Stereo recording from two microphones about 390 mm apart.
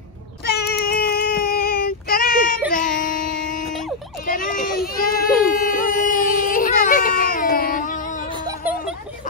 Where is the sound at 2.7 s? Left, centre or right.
Left.